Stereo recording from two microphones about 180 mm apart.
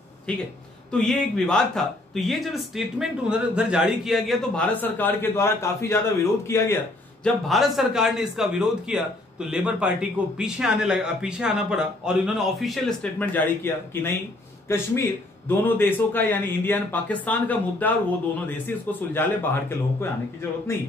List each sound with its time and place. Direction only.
0.3 s speech: 5° left (ahead or behind)
4.7 s a man's voice: 10° left (ahead or behind)
7.2 s a man's voice: centre (ahead or behind)